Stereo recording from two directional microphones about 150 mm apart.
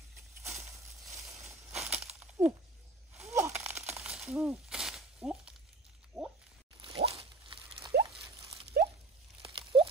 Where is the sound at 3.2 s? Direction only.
15° right (ahead or behind); by 6.3 s centre (ahead or behind).